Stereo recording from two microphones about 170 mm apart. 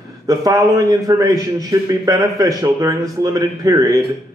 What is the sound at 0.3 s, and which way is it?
A man's voice, 20° right (ahead or behind).